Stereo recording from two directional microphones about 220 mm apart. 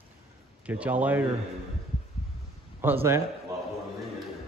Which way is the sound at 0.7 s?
5° right (ahead or behind).